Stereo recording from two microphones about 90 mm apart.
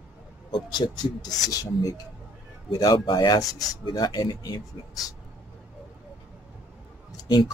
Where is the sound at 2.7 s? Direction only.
50° left (ahead or behind).